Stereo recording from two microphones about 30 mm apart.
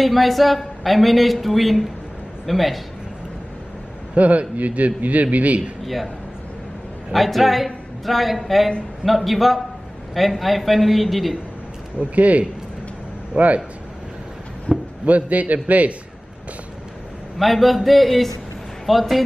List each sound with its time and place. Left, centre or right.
0.0 s speech: centre
4.1 s a man's voice: right
7.1 s speech: centre
12.0 s a man's voice: right
14.7 s a sound: left
15.0 s a man's voice: right
17.4 s speech: centre